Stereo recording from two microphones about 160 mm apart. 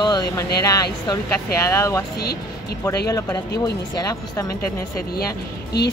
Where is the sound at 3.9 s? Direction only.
20° left (ahead or behind).